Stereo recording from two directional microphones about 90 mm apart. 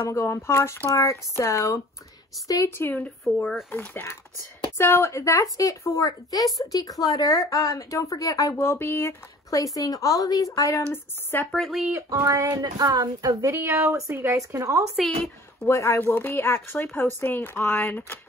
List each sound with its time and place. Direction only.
0.0 s speech: 30° left (ahead or behind)
2.7 s speech: 25° left (ahead or behind); by 8.5 s 40° left (ahead or behind)
8.5 s speech: 25° left (ahead or behind)
9.5 s speech: 40° left (ahead or behind)
10.9 s speech: 25° left (ahead or behind)
11.5 s speech: centre (ahead or behind)
12.1 s speech: 35° right (ahead or behind)
13.6 s speech: 30° right (ahead or behind)
15.6 s speech: 35° left (ahead or behind)
16.0 s speech: 20° left (ahead or behind)